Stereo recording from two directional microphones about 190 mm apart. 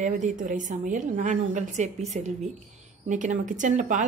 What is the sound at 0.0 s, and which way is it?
A woman's voice, 40° right (ahead or behind).